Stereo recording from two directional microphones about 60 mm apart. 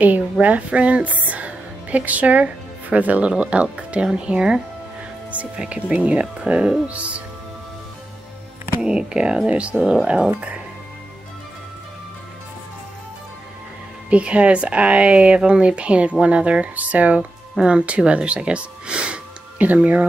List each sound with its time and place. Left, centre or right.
0.0 s speech: right
8.8 s speech: centre
14.1 s speech: centre